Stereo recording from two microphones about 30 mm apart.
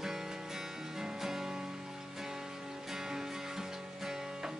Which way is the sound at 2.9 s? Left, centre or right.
Centre.